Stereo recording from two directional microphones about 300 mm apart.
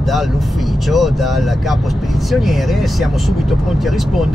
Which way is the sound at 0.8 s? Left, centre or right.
Centre.